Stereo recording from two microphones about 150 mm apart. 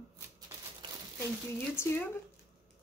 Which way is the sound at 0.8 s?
30° right (ahead or behind).